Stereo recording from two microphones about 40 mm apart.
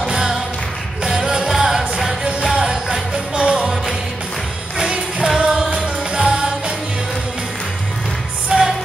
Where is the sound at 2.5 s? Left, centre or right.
Right.